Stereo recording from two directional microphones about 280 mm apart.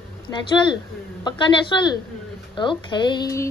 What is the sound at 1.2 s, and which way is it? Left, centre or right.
Speech, centre.